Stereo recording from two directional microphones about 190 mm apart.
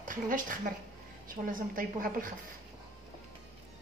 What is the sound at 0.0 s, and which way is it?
A woman's voice, 45° right (ahead or behind).